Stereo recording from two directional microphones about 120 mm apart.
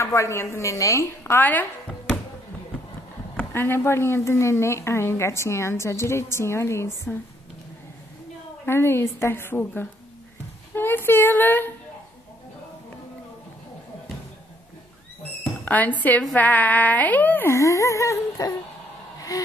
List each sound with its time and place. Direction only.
0.0 s speech: 25° left (ahead or behind)
3.3 s a woman's voice: 20° left (ahead or behind)
8.6 s a woman's voice: 20° left (ahead or behind)
15.6 s a sound: 15° left (ahead or behind); by 19.4 s 30° left (ahead or behind)